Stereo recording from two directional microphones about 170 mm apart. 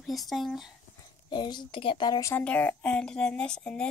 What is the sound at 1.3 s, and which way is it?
A woman's voice, 25° left (ahead or behind).